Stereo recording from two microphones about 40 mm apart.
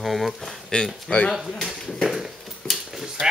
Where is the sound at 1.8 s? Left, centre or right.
Centre.